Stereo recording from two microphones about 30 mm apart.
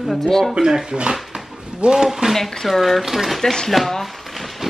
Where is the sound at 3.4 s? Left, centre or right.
Centre.